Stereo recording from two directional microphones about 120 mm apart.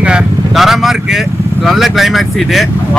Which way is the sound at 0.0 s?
5° right (ahead or behind).